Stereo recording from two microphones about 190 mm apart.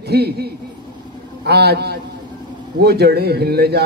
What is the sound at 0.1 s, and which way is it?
A woman's voice, 55° right (ahead or behind).